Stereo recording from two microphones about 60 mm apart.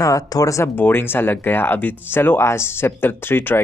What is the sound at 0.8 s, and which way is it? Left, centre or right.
Speech, left.